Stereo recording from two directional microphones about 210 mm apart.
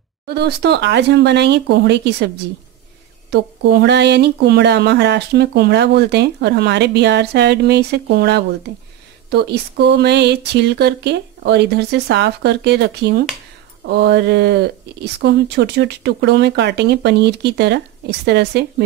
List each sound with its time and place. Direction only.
0.3 s speech: 50° right (ahead or behind)